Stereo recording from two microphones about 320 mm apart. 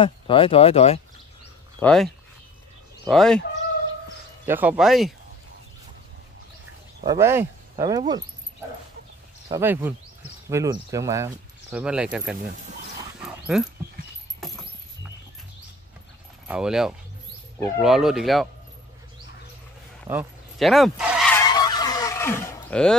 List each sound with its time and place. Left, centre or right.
0.0 s speech: centre
1.8 s speech: centre
3.1 s speech: centre
4.5 s speech: centre
7.1 s speech: centre
9.5 s speech: centre
13.5 s speech: centre
14.4 s keys jangling: centre
16.4 s speech: centre
20.1 s goose: centre